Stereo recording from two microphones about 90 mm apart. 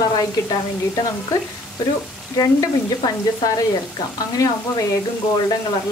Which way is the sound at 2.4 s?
45° left (ahead or behind).